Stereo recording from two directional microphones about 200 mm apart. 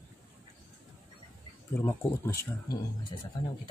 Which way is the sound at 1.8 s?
10° left (ahead or behind).